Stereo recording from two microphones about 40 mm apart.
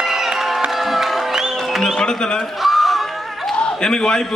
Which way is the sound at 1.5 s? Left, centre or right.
Centre.